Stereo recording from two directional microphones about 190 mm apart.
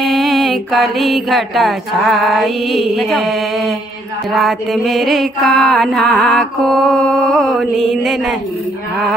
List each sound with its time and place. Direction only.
0.0 s music: centre (ahead or behind)